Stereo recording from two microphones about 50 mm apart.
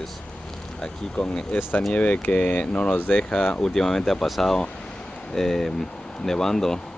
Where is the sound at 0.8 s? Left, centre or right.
Centre.